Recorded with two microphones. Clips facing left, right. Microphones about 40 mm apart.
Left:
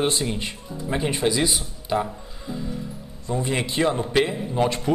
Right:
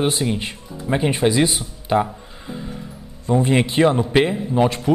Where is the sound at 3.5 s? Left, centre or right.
Right.